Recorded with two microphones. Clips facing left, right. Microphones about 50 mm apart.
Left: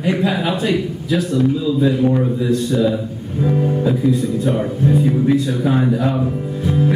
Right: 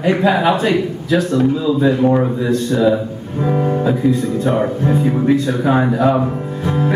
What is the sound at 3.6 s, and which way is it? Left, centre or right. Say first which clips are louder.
Music: right 2 dB; right.